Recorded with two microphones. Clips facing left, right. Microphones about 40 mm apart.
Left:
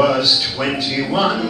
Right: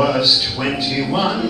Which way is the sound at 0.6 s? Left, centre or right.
Centre.